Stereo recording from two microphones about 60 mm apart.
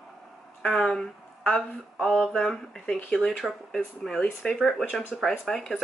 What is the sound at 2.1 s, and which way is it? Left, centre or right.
Speech, centre.